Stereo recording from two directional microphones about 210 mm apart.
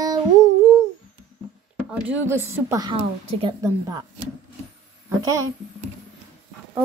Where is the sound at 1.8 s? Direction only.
5° right (ahead or behind).